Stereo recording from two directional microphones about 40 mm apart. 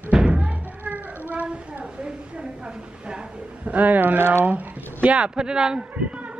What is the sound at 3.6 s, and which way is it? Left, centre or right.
Speech, right.